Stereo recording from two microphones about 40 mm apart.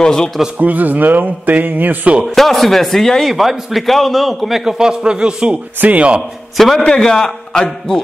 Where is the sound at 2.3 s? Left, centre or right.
Centre.